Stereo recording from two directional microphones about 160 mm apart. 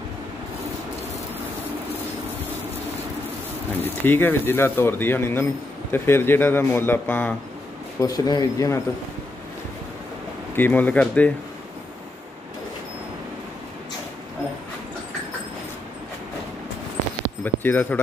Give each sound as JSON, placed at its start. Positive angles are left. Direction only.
{"t": 3.8, "sound": "speech", "side_deg": 15}
{"t": 8.0, "sound": "speech", "side_deg": 25}
{"t": 10.5, "sound": "speech", "side_deg": 10}
{"t": 17.4, "sound": "speech", "side_deg": 10}